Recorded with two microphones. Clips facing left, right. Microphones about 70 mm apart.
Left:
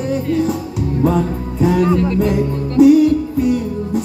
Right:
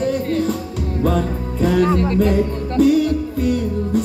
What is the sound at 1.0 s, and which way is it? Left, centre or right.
Music, centre.